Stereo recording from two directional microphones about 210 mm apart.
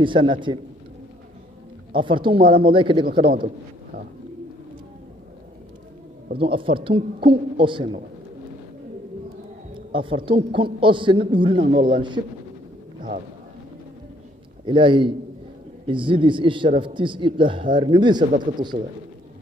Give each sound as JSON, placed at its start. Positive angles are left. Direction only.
{"t": 0.0, "sound": "a man's voice", "side_deg": -25}
{"t": 2.0, "sound": "a man's voice", "side_deg": -25}
{"t": 6.3, "sound": "a man's voice", "side_deg": -25}
{"t": 9.8, "sound": "a man's voice", "side_deg": -25}
{"t": 14.7, "sound": "a man's voice", "side_deg": -25}